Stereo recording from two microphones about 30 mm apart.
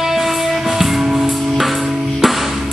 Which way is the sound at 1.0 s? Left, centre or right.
Centre.